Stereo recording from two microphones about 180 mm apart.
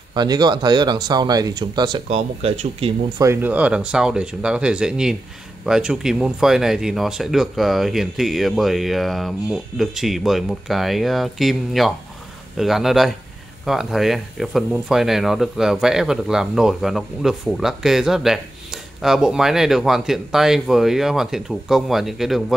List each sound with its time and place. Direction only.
0.1 s speech: 25° right (ahead or behind)
2.0 s speech: 35° right (ahead or behind)
3.2 s speech: 15° right (ahead or behind)